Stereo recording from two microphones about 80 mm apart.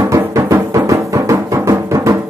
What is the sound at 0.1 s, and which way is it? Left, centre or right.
Music, right.